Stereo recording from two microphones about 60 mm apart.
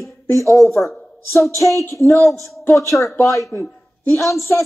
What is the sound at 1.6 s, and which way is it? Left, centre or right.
Speech, left.